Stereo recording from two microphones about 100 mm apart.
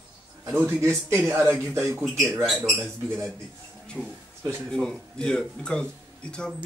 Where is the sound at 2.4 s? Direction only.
Centre (ahead or behind).